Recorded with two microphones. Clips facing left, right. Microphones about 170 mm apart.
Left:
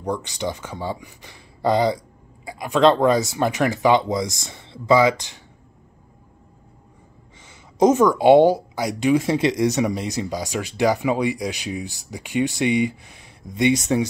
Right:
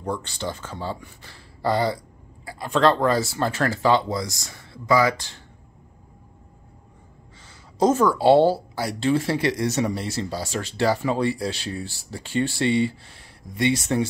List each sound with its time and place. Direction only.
0.0 s speech: 15° left (ahead or behind)
7.4 s speech: 20° left (ahead or behind)